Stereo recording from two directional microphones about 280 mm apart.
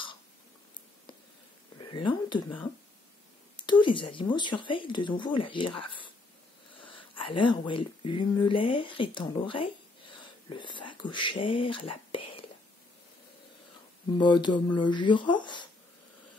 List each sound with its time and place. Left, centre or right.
1.8 s a sound: centre
3.6 s speech: centre
7.2 s speech: centre
12.1 s whispering: centre
14.1 s speech: centre